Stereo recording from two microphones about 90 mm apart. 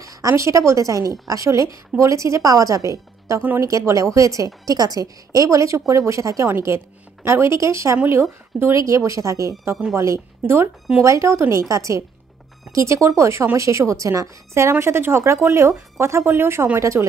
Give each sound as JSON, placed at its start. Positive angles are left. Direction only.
{"t": 0.0, "sound": "a woman's voice", "side_deg": -40}